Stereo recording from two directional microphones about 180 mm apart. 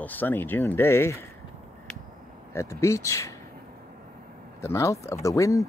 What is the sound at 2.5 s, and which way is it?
Speech, 15° left (ahead or behind).